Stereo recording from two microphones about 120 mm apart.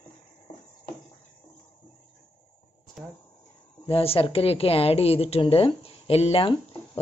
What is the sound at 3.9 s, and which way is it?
Speech, 50° left (ahead or behind).